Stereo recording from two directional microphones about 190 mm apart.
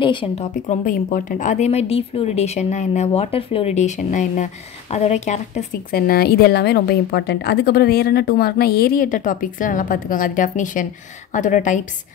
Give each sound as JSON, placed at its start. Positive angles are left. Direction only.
{"t": 0.0, "sound": "a woman's voice", "side_deg": 25}
{"t": 0.7, "sound": "a woman's voice", "side_deg": 45}
{"t": 5.9, "sound": "a woman's voice", "side_deg": 55}